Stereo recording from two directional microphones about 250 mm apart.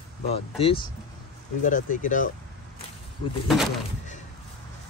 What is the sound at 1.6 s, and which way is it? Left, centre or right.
Speech, left.